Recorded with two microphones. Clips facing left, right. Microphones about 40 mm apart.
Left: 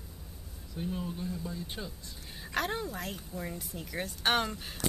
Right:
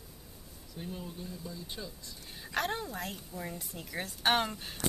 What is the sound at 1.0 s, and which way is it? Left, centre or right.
Speech, left.